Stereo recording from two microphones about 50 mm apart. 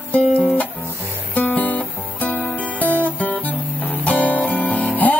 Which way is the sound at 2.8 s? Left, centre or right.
Left.